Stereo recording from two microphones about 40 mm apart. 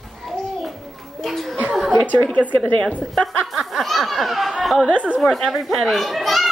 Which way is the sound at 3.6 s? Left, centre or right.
Centre.